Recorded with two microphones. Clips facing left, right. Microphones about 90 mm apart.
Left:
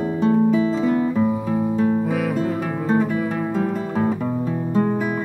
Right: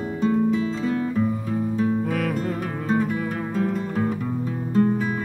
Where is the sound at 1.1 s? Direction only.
10° left (ahead or behind).